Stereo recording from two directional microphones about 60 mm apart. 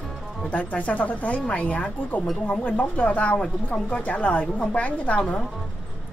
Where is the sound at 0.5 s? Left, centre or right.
Left.